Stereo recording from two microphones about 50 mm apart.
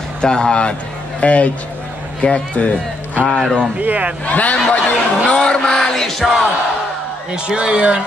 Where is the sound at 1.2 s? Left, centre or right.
Left.